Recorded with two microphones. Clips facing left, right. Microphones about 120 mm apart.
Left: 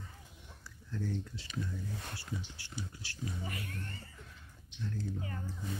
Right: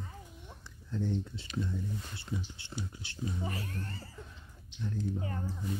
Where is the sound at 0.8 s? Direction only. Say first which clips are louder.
Right 4 dB; 20° right (ahead or behind).